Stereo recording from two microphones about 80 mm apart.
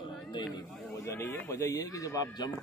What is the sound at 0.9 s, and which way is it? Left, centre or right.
Speech, left.